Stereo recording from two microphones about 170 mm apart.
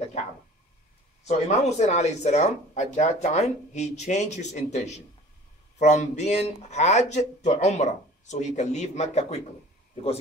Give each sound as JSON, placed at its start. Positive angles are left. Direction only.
{"t": 1.2, "sound": "speech", "side_deg": 40}